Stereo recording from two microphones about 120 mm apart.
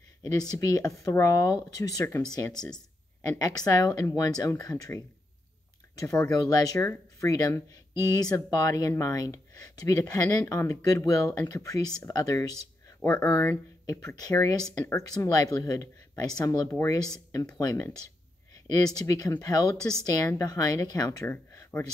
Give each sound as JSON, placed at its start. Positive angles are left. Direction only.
{"t": 0.3, "sound": "speech", "side_deg": 30}
{"t": 6.3, "sound": "speech", "side_deg": 30}
{"t": 18.9, "sound": "speech", "side_deg": 30}
{"t": 21.3, "sound": "a sound", "side_deg": 15}